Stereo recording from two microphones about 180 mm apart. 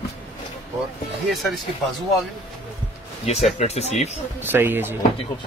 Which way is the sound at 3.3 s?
35° left (ahead or behind).